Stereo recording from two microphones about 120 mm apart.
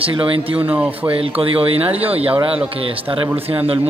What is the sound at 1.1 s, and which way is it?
Speech, 50° right (ahead or behind).